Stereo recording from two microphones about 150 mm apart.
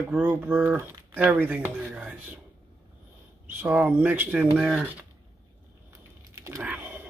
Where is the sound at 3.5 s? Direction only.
10° right (ahead or behind).